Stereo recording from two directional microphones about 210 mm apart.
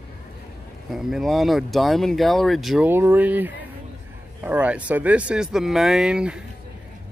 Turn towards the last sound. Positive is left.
turn(degrees=-5)  # may be behind; listen again after turning